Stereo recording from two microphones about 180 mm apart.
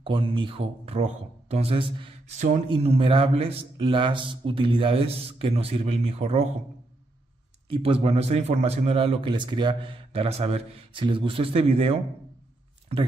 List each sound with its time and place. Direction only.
0.0 s speech: 30° right (ahead or behind)
2.3 s a man's voice: 40° right (ahead or behind)
7.7 s a man's voice: 30° right (ahead or behind)